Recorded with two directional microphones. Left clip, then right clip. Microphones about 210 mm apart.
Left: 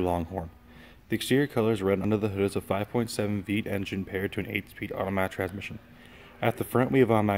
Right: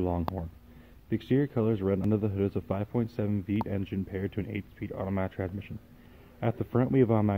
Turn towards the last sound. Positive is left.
turn(degrees=10)  # may be behind; listen again after turning